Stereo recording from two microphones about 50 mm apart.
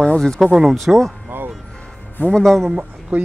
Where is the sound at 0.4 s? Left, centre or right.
Centre.